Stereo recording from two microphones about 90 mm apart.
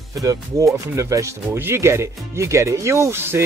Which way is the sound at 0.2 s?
40° right (ahead or behind).